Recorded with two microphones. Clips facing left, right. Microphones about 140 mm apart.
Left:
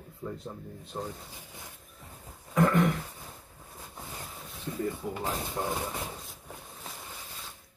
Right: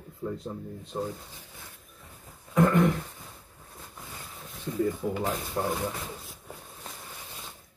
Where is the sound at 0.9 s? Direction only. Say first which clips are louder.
Right 4 dB; 10° right (ahead or behind).